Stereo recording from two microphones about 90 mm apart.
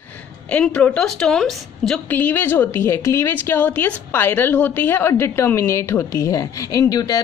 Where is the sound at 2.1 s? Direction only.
20° left (ahead or behind).